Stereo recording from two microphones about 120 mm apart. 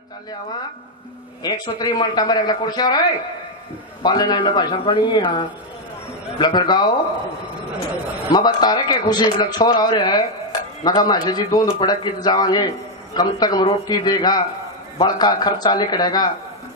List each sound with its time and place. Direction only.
1.4 s a man's voice: 35° left (ahead or behind)
4.0 s a man's voice: 35° left (ahead or behind)
6.4 s a man's voice: 35° left (ahead or behind)
8.3 s a man's voice: 35° left (ahead or behind)